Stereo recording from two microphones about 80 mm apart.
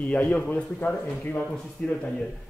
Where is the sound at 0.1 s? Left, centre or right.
Centre.